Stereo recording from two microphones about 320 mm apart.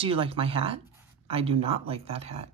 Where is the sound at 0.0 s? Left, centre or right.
Centre.